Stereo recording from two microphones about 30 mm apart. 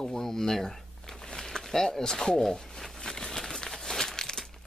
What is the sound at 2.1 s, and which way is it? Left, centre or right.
Crumpling, centre.